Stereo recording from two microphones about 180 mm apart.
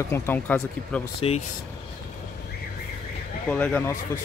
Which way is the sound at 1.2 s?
35° left (ahead or behind).